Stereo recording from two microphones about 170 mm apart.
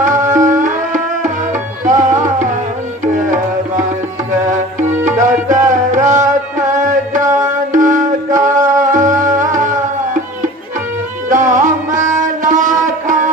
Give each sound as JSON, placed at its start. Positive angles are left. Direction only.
{"t": 0.0, "sound": "tabla", "side_deg": -50}
{"t": 0.5, "sound": "music", "side_deg": -50}
{"t": 5.0, "sound": "music", "side_deg": -45}
{"t": 7.2, "sound": "music", "side_deg": -15}
{"t": 7.7, "sound": "music", "side_deg": -50}
{"t": 11.2, "sound": "music", "side_deg": -50}